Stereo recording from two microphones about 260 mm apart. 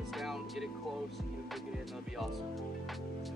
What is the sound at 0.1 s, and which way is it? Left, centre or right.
Music, centre.